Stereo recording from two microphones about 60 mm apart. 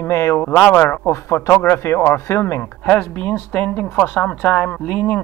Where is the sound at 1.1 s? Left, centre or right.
Left.